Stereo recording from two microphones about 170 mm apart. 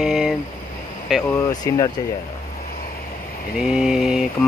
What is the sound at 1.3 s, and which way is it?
Speech, 25° left (ahead or behind).